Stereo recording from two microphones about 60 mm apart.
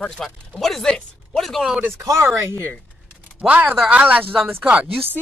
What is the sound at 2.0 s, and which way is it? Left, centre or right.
Speech, right.